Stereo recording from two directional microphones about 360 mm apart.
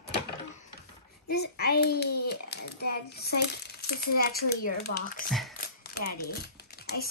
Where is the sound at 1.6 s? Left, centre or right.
Left.